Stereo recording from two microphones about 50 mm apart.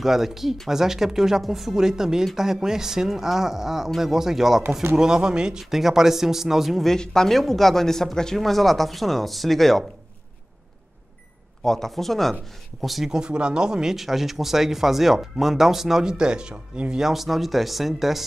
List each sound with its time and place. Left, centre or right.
0.0 s speech: centre
6.9 s speech: centre
11.6 s speech: centre
13.1 s speech: centre
17.0 s speech: centre